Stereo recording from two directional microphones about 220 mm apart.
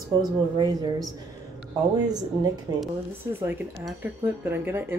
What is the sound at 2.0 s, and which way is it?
Speech, 20° right (ahead or behind).